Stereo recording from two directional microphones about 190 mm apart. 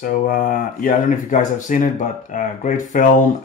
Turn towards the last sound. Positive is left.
turn(degrees=45)  # may be behind; listen again after turning